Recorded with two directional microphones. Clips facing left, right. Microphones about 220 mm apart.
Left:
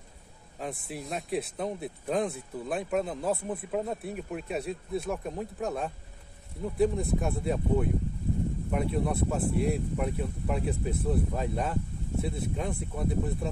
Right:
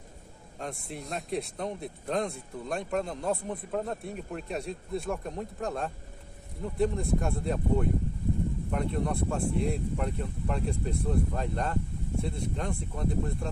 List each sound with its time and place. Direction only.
0.6 s speech: centre (ahead or behind)